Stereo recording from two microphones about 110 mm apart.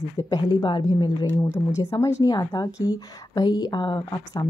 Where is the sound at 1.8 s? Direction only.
30° left (ahead or behind).